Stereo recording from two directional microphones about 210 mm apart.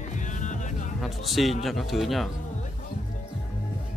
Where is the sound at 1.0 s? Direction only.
Centre (ahead or behind).